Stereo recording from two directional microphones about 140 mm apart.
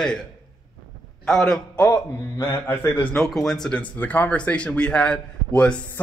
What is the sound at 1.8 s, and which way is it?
A man's voice, 25° left (ahead or behind).